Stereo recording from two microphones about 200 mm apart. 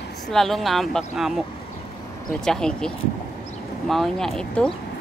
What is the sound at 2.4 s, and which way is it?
Speech, 5° left (ahead or behind).